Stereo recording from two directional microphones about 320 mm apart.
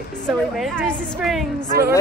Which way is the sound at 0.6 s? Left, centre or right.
Centre.